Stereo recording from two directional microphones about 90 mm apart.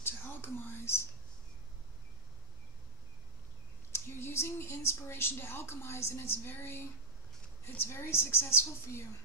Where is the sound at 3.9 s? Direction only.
30° left (ahead or behind).